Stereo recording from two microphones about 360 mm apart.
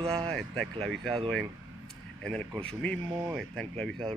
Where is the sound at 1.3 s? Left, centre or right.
Centre.